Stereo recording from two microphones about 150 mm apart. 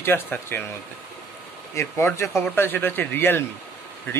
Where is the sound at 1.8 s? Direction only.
15° left (ahead or behind).